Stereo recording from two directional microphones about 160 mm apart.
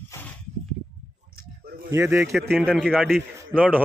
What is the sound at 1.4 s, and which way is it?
Sheep, 70° right (ahead or behind).